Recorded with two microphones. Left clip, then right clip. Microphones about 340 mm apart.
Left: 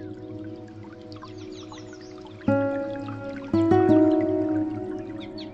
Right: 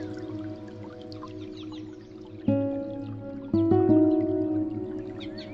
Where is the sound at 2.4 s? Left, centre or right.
Centre.